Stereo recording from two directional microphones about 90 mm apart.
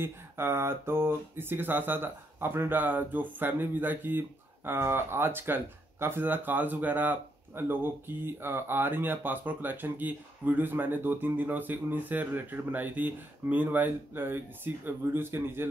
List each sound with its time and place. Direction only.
0.0 s speech: 30° right (ahead or behind)